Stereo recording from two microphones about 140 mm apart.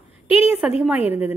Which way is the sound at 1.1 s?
15° right (ahead or behind).